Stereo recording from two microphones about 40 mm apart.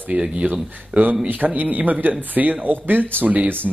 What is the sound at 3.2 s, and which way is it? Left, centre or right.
Speech, right.